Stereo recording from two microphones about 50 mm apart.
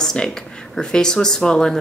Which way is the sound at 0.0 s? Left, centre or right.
Centre.